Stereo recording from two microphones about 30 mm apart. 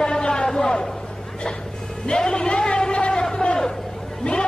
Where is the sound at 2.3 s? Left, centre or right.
Left.